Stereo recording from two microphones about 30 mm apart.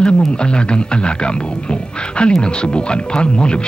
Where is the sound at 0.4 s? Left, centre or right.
Left.